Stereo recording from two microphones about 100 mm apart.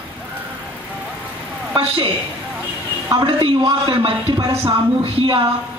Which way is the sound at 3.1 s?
55° right (ahead or behind).